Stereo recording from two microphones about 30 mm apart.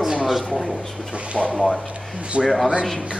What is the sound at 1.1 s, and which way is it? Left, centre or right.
Speech, right.